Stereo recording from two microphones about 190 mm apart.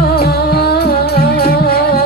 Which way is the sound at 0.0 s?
55° left (ahead or behind).